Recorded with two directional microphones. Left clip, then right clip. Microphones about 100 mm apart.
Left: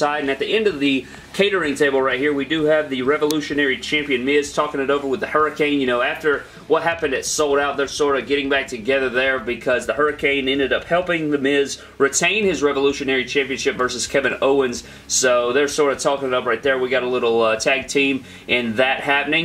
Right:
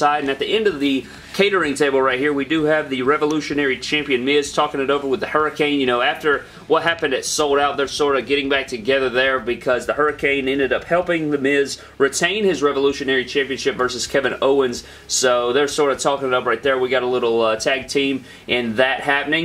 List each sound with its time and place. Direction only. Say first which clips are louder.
0.1 s speech: right 1 dB; centre (ahead or behind)
1.5 s speech: right 1 dB; 10° right (ahead or behind)
9.8 s speech: even; 15° right (ahead or behind)
10.3 s speech: even; 25° right (ahead or behind)
11.4 s speech: right 1 dB; 40° right (ahead or behind)
12.0 s speech: even; 5° right (ahead or behind)